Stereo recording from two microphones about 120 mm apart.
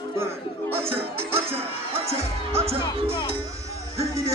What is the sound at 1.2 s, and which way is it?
Music, 20° right (ahead or behind).